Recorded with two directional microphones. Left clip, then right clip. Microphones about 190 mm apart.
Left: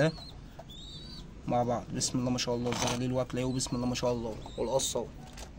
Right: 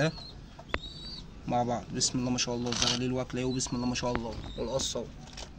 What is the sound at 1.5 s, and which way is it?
Speech, 20° left (ahead or behind).